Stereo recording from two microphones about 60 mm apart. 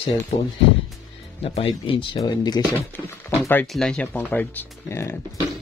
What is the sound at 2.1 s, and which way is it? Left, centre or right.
Speech, left.